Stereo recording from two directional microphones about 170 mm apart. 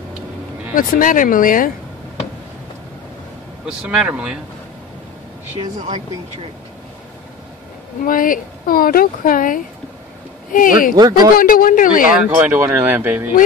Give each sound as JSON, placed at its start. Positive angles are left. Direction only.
{"t": 0.7, "sound": "speech", "side_deg": 55}
{"t": 3.6, "sound": "speech", "side_deg": -5}
{"t": 5.8, "sound": "speech", "side_deg": -40}
{"t": 8.0, "sound": "speech", "side_deg": 55}
{"t": 12.1, "sound": "speech", "side_deg": -10}